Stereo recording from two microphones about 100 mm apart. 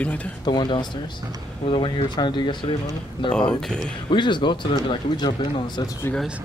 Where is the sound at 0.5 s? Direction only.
45° left (ahead or behind).